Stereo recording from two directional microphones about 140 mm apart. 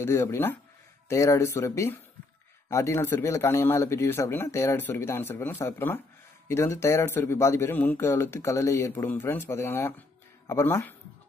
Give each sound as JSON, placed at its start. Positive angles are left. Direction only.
{"t": 0.0, "sound": "speech", "side_deg": 20}